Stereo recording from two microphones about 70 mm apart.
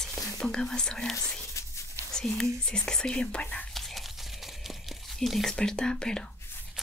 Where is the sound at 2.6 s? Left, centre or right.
Centre.